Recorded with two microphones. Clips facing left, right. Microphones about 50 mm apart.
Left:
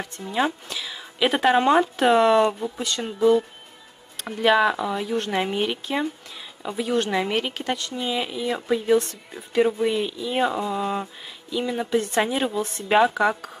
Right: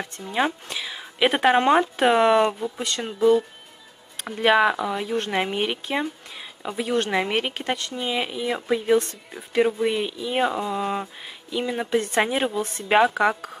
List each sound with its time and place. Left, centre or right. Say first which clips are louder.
0.2 s speech: left 1 dB; centre
0.7 s a woman's voice: right 1 dB; centre